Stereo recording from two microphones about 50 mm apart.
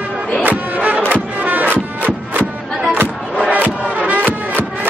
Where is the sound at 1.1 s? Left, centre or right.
Right.